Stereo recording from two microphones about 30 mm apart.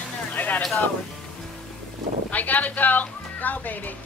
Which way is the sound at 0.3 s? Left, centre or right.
Left.